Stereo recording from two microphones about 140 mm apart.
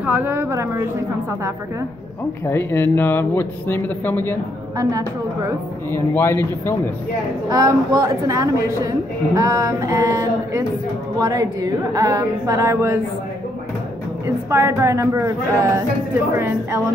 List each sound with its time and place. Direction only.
0.0 s a woman's voice: 15° right (ahead or behind)
2.5 s speech: 15° left (ahead or behind)
5.9 s speech: 15° left (ahead or behind)
7.4 s a woman's voice: 30° right (ahead or behind)
14.2 s a woman's voice: 20° right (ahead or behind)